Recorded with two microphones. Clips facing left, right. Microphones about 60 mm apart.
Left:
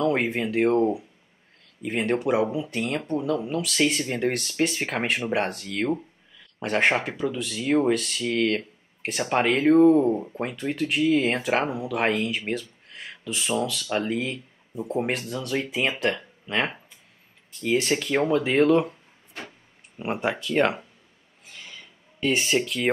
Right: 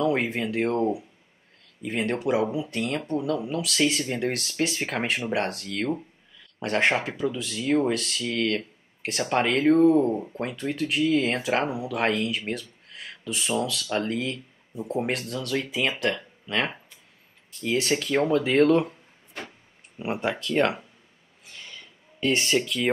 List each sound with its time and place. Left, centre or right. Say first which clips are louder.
0.0 s speech: left 1 dB; centre
8.4 s speech: left 2 dB; centre
9.0 s speech: left 1 dB; centre
16.4 s speech: left 1 dB; centre
21.5 s a sound: even; centre